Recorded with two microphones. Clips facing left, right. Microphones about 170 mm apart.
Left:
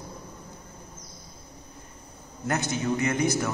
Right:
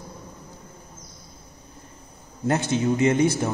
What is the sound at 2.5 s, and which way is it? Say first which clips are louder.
A man's voice: right 5 dB; 25° right (ahead or behind).